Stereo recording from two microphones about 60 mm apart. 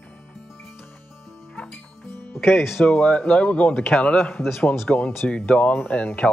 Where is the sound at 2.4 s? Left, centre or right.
Centre.